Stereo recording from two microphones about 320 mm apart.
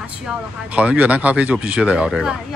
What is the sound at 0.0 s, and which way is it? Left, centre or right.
Speech, centre.